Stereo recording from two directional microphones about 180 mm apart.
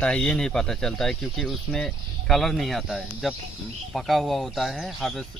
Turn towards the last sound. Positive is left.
turn(degrees=0)  # may be behind; listen again after turning